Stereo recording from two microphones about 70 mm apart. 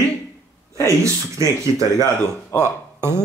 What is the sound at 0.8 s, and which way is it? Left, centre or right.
Speech, right.